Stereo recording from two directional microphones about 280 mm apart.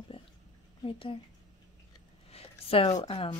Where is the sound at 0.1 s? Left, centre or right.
Centre.